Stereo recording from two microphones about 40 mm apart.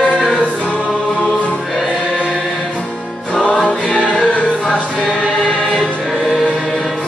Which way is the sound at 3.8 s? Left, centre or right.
Centre.